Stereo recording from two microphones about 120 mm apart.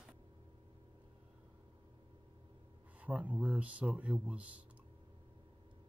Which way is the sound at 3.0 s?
10° right (ahead or behind).